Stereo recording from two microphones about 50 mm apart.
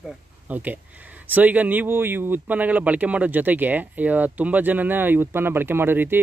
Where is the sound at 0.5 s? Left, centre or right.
Right.